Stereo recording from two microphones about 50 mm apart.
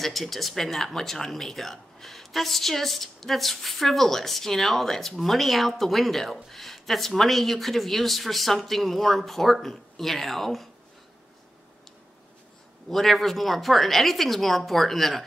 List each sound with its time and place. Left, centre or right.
0.0 s speech: centre
12.9 s speech: centre